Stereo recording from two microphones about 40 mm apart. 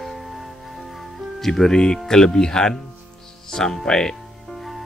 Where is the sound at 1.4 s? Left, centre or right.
Centre.